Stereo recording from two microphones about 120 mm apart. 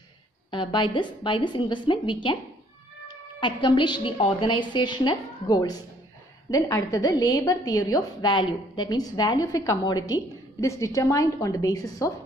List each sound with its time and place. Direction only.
0.5 s a woman's voice: 45° left (ahead or behind)
3.3 s a woman's voice: 45° left (ahead or behind)
8.3 s a woman's voice: 40° left (ahead or behind)